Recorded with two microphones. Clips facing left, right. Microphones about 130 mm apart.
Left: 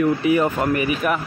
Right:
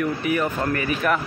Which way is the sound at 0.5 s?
15° left (ahead or behind).